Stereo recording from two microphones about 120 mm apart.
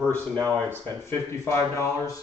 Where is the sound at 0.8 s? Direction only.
20° left (ahead or behind).